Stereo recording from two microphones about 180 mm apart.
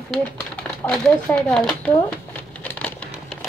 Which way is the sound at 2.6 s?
10° left (ahead or behind).